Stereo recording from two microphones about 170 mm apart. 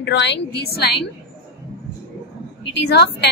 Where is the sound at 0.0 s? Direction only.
90° left; by 1.0 s 70° left (ahead or behind).